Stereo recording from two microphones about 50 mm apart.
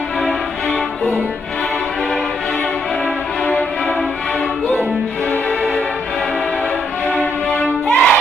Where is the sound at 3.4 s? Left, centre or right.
Left.